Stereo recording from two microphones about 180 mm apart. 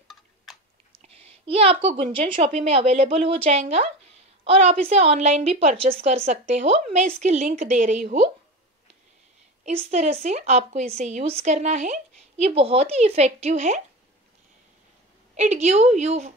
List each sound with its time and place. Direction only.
0.5 s biting: centre (ahead or behind)
1.0 s a woman's voice: 35° right (ahead or behind)
9.8 s a woman's voice: 40° right (ahead or behind)
15.3 s a woman's voice: 40° right (ahead or behind)